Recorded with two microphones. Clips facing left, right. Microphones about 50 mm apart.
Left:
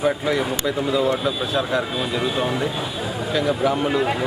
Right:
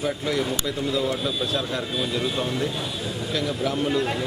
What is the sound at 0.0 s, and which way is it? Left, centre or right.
Speech, centre.